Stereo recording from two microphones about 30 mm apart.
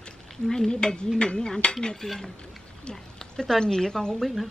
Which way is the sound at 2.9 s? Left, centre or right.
Centre.